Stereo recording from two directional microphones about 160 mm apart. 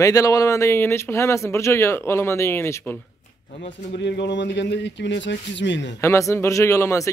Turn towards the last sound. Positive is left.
turn(degrees=20)  # may be behind; listen again after turning